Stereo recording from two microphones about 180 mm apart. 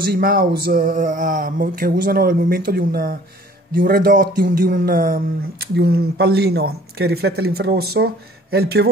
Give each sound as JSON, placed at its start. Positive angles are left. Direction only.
{"t": 0.0, "sound": "speech", "side_deg": -55}